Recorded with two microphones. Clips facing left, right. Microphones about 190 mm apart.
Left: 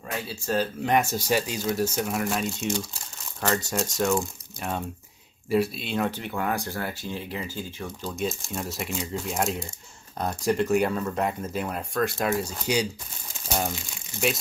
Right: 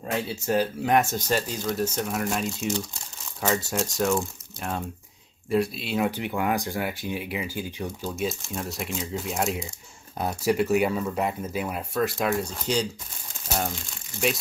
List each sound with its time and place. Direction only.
0.2 s speech: 20° right (ahead or behind)
0.8 s speech: centre (ahead or behind)
1.2 s speech: 10° left (ahead or behind)